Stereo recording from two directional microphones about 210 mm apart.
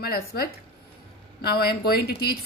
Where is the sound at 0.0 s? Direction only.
45° left (ahead or behind).